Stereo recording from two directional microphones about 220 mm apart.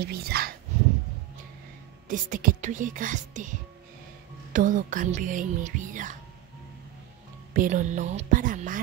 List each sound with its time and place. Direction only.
0.0 s speech: 45° right (ahead or behind)
2.0 s speech: 35° right (ahead or behind)
7.5 s speech: 35° right (ahead or behind)